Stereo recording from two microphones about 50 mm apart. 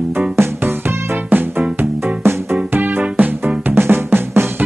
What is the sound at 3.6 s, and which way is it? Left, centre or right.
Drum, right.